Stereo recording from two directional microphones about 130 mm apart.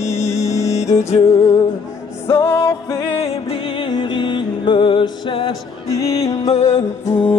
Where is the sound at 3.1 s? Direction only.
50° left (ahead or behind).